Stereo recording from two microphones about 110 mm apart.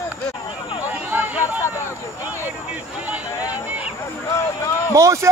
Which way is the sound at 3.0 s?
15° right (ahead or behind).